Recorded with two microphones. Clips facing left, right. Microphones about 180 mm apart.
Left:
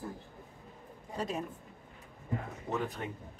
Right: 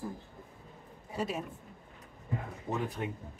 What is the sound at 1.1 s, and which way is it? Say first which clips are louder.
Speech: right 1 dB; 10° right (ahead or behind).